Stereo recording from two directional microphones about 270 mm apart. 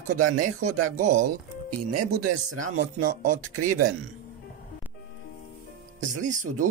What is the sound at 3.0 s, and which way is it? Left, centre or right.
Speech, right.